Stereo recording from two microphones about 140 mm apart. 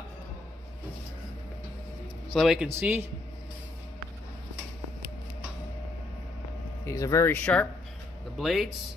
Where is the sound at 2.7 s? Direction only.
15° right (ahead or behind).